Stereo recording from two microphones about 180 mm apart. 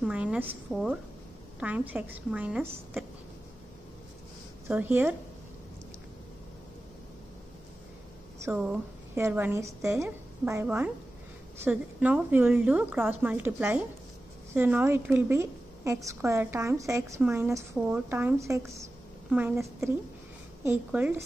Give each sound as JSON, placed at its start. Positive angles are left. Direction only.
{"t": 0.0, "sound": "a woman's voice", "side_deg": -5}
{"t": 4.6, "sound": "a woman's voice", "side_deg": -10}
{"t": 8.4, "sound": "a woman's voice", "side_deg": -5}